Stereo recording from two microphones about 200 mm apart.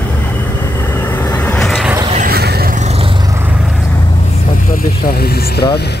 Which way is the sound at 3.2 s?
15° right (ahead or behind).